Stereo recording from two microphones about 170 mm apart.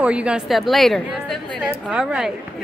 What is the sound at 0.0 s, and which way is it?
A woman's voice, 5° right (ahead or behind).